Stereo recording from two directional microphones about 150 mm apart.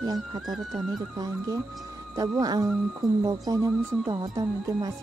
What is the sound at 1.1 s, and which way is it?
Music, 25° right (ahead or behind).